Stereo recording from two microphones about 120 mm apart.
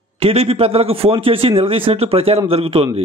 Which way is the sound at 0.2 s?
55° right (ahead or behind).